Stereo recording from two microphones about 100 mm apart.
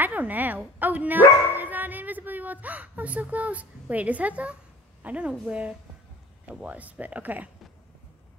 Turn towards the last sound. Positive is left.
turn(degrees=-15)  # may be behind; listen again after turning